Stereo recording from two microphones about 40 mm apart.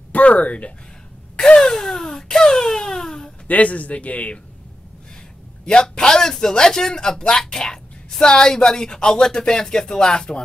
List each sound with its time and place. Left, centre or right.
0.1 s speech: left
1.3 s a sound: left
3.4 s a man's voice: left
5.7 s speech: left